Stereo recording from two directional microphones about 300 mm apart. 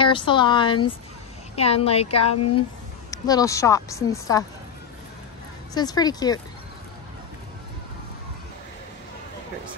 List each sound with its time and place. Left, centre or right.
0.0 s a woman's voice: centre
2.3 s speech: left
3.1 s a woman's voice: centre
5.8 s a woman's voice: centre